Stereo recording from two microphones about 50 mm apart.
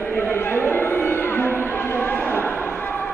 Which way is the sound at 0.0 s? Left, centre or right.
Left.